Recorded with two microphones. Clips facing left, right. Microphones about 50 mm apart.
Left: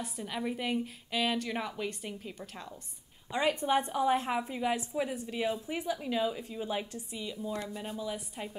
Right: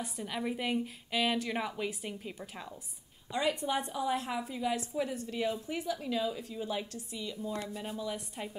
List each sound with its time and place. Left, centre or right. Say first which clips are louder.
0.0 s a woman's voice: even; centre
3.3 s a woman's voice: left 3 dB; left; by 7.8 s centre
7.8 s a woman's voice: even; centre